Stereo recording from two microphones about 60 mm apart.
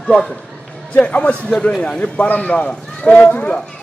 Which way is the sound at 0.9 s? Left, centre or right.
Left.